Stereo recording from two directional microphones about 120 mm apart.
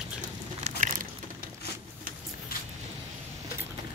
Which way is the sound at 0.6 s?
80° right.